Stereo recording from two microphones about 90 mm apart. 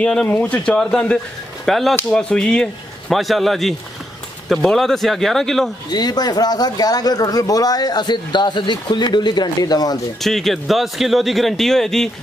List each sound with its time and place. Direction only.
0.0 s a man's voice: 10° left (ahead or behind)
5.9 s speech: 50° left (ahead or behind)
10.2 s a man's voice: centre (ahead or behind)